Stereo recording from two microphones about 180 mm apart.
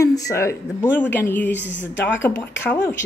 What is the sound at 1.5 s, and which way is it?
Speech, 80° left.